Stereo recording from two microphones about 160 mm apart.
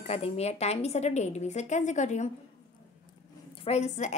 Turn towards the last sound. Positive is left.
turn(degrees=45)  # may be behind; listen again after turning